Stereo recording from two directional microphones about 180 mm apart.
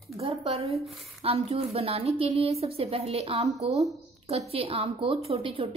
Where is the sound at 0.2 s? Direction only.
35° right (ahead or behind).